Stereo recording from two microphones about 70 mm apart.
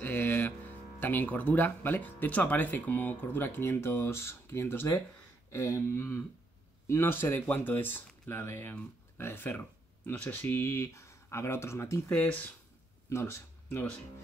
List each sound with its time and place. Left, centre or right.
0.0 s speech: left
12.1 s speech: left
13.1 s speech: left